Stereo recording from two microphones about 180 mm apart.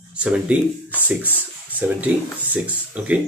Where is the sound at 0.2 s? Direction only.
5° right (ahead or behind).